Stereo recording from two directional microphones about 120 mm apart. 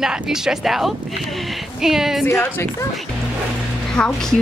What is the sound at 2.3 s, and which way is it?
Speech, 20° left (ahead or behind).